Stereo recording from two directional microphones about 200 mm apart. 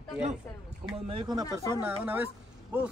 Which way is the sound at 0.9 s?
25° right (ahead or behind).